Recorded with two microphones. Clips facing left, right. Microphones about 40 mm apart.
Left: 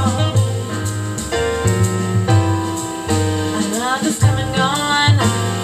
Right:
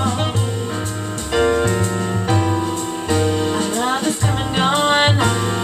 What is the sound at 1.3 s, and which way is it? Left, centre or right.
Music, centre.